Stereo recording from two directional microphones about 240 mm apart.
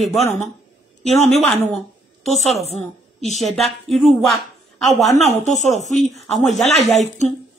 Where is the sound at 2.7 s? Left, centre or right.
Left.